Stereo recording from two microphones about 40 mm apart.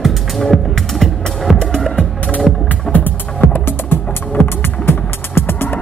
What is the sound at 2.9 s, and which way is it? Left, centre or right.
Music, left.